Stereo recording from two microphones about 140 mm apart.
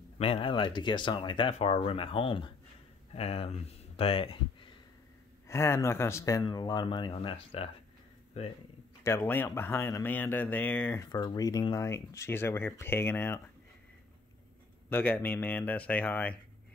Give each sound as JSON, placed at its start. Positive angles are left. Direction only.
{"t": 0.2, "sound": "speech", "side_deg": 40}
{"t": 3.2, "sound": "speech", "side_deg": 45}
{"t": 5.5, "sound": "speech", "side_deg": 20}
{"t": 9.0, "sound": "speech", "side_deg": 15}
{"t": 11.0, "sound": "speech", "side_deg": 30}
{"t": 14.9, "sound": "speech", "side_deg": 10}